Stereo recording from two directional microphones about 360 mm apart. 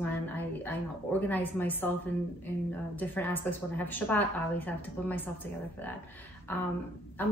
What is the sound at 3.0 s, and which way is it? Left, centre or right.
Speech, centre.